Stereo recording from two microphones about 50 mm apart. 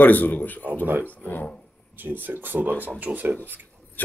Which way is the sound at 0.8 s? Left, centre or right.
Right.